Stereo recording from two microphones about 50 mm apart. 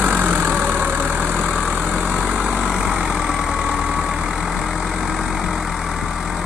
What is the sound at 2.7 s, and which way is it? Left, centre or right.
Vehicle, centre.